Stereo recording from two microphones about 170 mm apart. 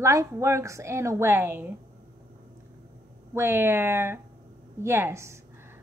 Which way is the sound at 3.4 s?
15° right (ahead or behind).